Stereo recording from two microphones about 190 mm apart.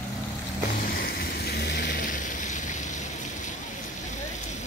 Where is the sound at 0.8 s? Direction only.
55° left (ahead or behind).